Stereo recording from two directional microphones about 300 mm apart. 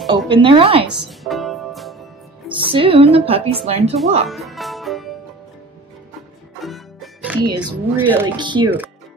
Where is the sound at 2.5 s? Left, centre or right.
Centre.